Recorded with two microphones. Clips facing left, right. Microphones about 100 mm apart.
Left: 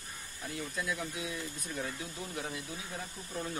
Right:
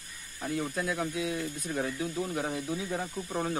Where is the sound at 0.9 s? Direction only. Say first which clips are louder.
Right 7 dB; 90° right.